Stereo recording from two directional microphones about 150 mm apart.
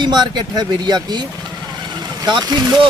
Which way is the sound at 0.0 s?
30° right (ahead or behind).